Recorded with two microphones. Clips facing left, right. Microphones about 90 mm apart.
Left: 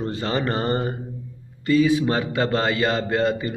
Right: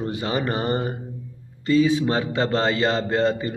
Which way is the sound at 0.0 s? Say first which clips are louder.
Even; 15° right (ahead or behind).